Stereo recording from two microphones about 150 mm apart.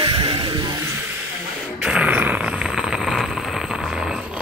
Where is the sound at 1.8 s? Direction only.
5° right (ahead or behind).